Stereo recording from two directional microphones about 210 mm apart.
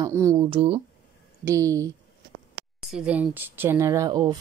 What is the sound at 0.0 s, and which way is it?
Speech, 15° right (ahead or behind).